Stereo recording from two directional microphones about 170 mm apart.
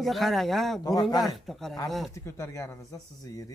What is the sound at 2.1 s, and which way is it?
Speech, 15° left (ahead or behind).